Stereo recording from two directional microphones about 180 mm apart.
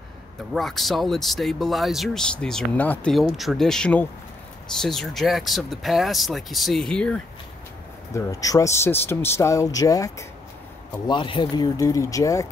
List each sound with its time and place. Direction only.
0.5 s speech: centre (ahead or behind)
8.1 s speech: 20° left (ahead or behind)